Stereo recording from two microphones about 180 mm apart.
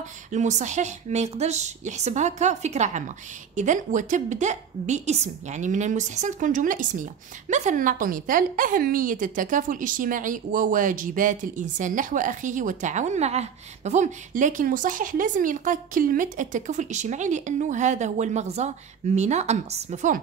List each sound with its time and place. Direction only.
0.3 s a woman's voice: 40° right (ahead or behind)